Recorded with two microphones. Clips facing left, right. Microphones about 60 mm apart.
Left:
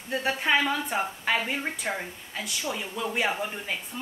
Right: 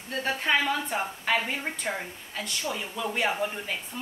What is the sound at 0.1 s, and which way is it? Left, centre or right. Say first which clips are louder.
A woman's voice: left 1 dB; centre.